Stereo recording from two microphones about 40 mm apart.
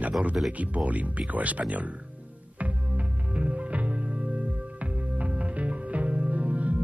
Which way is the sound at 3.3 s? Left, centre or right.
Right.